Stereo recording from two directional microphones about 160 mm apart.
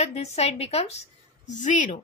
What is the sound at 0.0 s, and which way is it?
A woman's voice, 45° left (ahead or behind).